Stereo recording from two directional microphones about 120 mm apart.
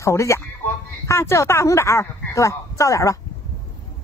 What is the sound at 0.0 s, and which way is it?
Speech, 25° left (ahead or behind).